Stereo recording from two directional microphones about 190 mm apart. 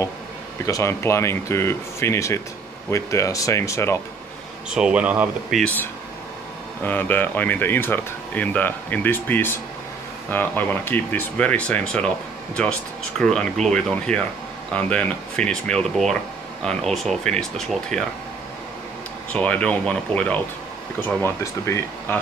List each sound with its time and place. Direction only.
0.7 s speech: 15° left (ahead or behind)
4.6 s speech: 5° right (ahead or behind)
19.3 s speech: 5° left (ahead or behind)